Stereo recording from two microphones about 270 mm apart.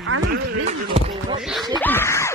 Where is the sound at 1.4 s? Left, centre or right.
Centre.